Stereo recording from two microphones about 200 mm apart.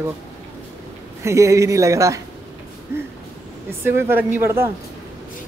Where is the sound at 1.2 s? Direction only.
15° right (ahead or behind).